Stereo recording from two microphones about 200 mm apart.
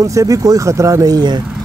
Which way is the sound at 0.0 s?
15° right (ahead or behind).